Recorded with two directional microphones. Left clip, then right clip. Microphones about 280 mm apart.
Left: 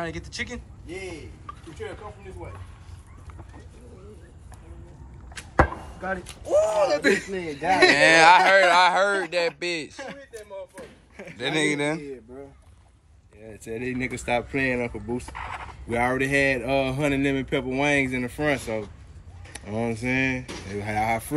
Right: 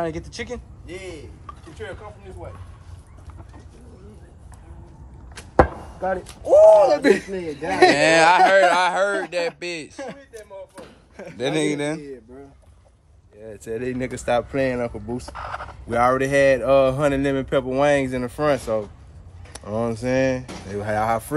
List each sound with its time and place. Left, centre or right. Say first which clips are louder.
0.0 s speech: right 4 dB; right
6.0 s speech: right 8 dB; right
6.8 s speech: right 5 dB; right
8.0 s speech: left 2 dB; centre
11.3 s speech: right 2 dB; centre
13.4 s speech: right 4 dB; centre
19.5 s speech: right 4 dB; centre
20.4 s speech: right 3 dB; right
20.8 s speech: right 4 dB; centre